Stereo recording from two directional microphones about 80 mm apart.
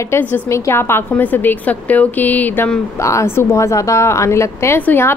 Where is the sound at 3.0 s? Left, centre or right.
Left.